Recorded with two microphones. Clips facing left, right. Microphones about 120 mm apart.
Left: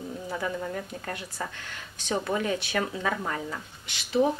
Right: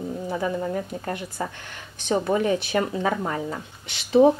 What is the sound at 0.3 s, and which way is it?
Speech, 20° right (ahead or behind).